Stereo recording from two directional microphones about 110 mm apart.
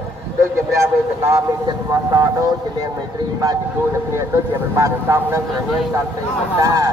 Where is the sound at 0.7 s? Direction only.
30° right (ahead or behind).